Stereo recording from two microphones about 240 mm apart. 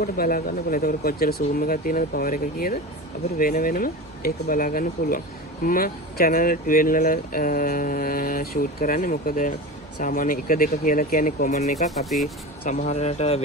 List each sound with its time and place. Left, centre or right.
0.0 s speech: left